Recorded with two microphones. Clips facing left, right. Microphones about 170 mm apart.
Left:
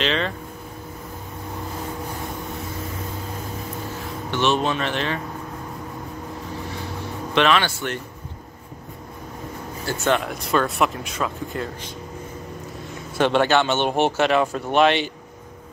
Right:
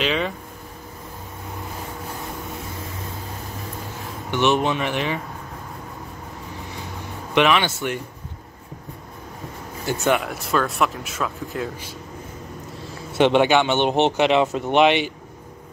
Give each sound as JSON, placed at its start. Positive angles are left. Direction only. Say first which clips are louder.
{"t": 0.0, "sound": "speech", "louder": "even", "side_deg": -5}
{"t": 4.3, "sound": "speech", "louder": "right 2 dB", "side_deg": -15}
{"t": 7.3, "sound": "speech", "louder": "right 1 dB", "side_deg": -15}
{"t": 10.0, "sound": "speech", "louder": "even", "side_deg": -5}
{"t": 13.2, "sound": "speech", "louder": "right 2 dB", "side_deg": -15}